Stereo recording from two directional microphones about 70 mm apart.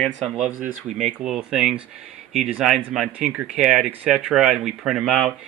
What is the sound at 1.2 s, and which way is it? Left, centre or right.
Speech, centre.